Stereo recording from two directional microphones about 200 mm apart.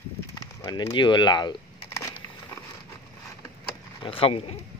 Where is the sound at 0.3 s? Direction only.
20° left (ahead or behind).